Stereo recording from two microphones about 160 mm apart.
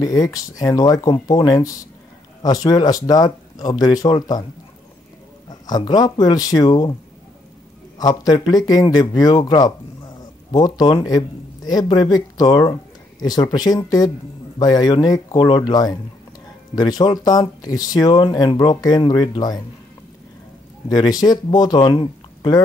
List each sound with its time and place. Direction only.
0.0 s speech: 25° left (ahead or behind)
5.5 s speech: 25° left (ahead or behind)
8.0 s speech: 25° left (ahead or behind)
20.9 s speech: 25° left (ahead or behind)